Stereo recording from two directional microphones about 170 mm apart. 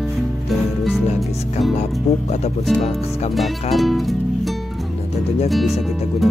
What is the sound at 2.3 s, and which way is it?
Speech, 40° left (ahead or behind).